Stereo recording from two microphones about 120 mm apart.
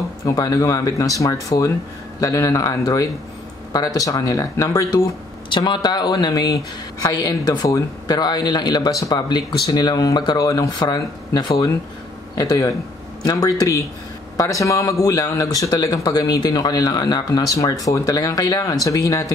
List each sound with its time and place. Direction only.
0.2 s speech: 30° left (ahead or behind)